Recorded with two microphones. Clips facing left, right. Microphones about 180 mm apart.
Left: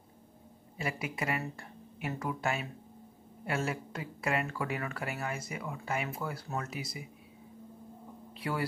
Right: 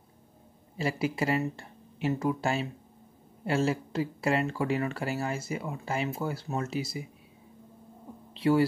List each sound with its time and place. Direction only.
0.7 s speech: 30° right (ahead or behind)
8.4 s speech: 25° right (ahead or behind)